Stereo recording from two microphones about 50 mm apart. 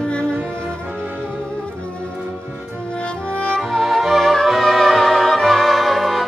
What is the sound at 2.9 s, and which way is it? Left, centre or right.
Music, left.